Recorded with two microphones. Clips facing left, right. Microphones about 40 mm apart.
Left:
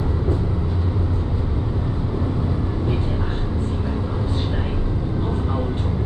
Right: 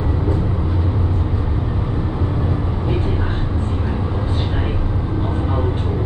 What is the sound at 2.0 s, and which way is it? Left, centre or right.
Vehicle, right.